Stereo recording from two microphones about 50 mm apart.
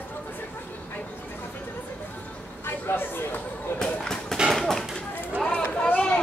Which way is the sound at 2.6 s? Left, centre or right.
Left.